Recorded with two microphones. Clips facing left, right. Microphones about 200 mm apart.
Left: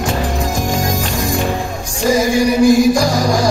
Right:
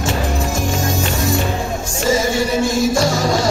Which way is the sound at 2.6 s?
25° right (ahead or behind).